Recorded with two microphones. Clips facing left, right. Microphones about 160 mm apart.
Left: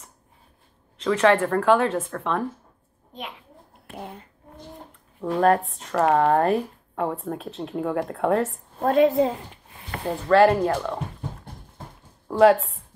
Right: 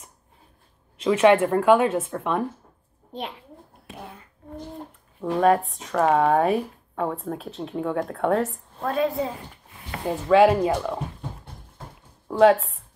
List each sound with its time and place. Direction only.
1.0 s speech: 10° right (ahead or behind)
3.1 s a child's voice: 35° right (ahead or behind)
5.2 s speech: centre (ahead or behind)
8.7 s a woman's voice: 45° left (ahead or behind)
10.0 s speech: 5° right (ahead or behind)
12.3 s speech: centre (ahead or behind)